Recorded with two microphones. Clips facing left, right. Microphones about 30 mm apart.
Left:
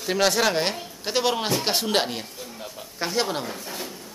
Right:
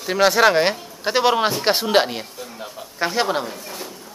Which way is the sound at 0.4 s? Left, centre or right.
Centre.